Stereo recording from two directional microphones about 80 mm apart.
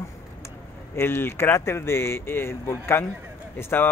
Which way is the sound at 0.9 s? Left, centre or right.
Left.